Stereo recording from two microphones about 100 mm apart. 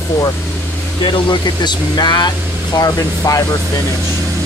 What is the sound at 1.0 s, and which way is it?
Speech, 50° left (ahead or behind).